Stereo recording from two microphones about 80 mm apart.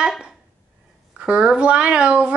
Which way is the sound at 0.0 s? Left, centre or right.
Centre.